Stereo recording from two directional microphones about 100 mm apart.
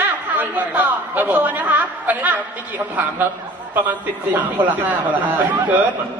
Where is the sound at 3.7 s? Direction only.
15° right (ahead or behind).